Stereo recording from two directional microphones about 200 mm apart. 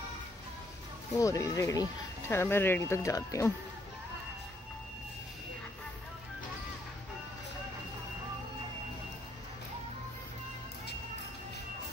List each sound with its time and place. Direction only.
1.1 s speech: 15° left (ahead or behind)